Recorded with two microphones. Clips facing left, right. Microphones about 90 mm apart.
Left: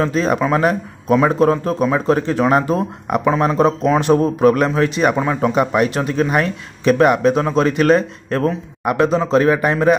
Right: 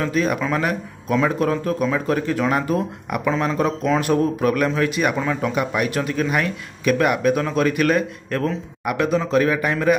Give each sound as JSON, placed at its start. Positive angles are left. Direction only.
{"t": 0.0, "sound": "a man's voice", "side_deg": 30}